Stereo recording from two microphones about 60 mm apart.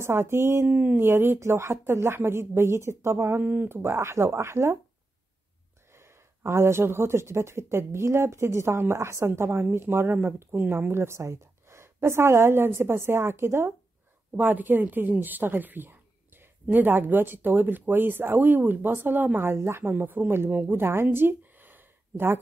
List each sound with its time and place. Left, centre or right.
0.0 s a woman's voice: right
0.7 s speech: right
0.9 s a woman's voice: right
5.9 s a woman's voice: right
14.3 s speech: right
19.5 s speech: right
20.8 s a sound: right